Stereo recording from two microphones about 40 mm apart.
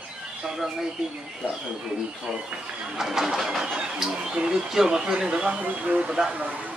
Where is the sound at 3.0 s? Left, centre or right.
Centre.